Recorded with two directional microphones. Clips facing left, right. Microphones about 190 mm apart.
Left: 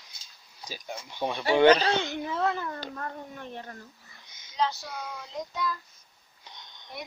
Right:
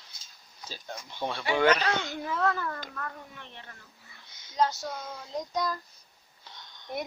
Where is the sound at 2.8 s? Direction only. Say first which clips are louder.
Left 3 dB; 30° left (ahead or behind).